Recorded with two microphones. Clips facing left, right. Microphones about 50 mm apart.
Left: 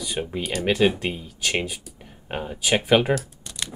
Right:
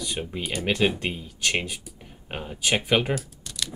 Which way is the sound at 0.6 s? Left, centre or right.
Centre.